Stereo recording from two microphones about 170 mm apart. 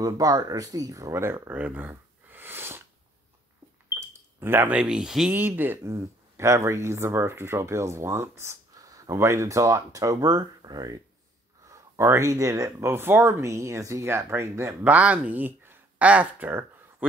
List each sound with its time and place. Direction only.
0.0 s speech: 20° right (ahead or behind)
3.9 s speech: 15° right (ahead or behind)